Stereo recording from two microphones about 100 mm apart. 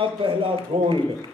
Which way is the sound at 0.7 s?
60° right (ahead or behind).